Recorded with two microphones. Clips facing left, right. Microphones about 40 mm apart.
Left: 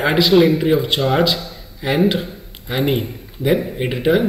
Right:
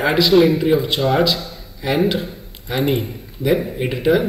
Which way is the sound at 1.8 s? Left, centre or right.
Centre.